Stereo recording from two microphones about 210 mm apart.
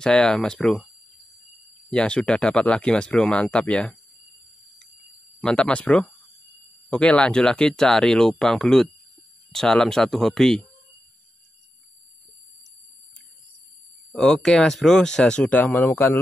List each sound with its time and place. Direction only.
0.0 s speech: 5° left (ahead or behind)
1.9 s speech: 5° left (ahead or behind)
5.4 s speech: 5° left (ahead or behind)
14.1 s speech: 5° left (ahead or behind)